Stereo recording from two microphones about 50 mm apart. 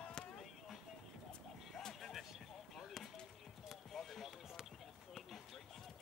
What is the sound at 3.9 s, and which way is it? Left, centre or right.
Basketball bounce, centre.